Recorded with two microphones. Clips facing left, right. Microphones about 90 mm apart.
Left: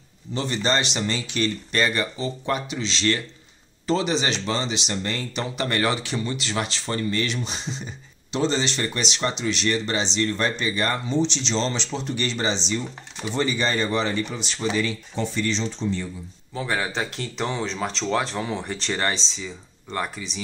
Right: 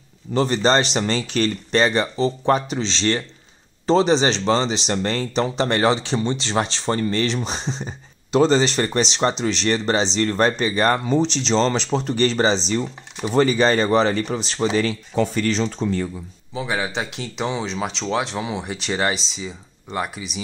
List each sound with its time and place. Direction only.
0.3 s speech: 40° right (ahead or behind)
16.5 s speech: 5° right (ahead or behind)